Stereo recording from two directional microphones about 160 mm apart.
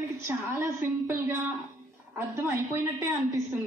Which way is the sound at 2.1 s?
15° right (ahead or behind).